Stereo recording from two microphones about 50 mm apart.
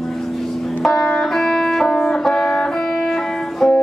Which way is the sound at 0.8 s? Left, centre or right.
Centre.